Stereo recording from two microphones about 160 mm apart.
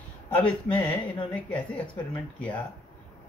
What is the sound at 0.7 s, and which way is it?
Speech, 10° left (ahead or behind).